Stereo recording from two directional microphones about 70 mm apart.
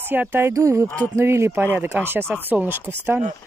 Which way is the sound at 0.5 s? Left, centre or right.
Right.